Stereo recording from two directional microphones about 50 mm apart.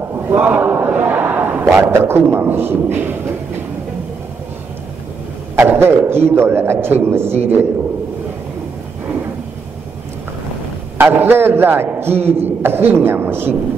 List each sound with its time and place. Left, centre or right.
0.3 s a man's voice: right
0.8 s a sound: right
1.9 s a man's voice: right
5.6 s a man's voice: right
11.0 s a man's voice: right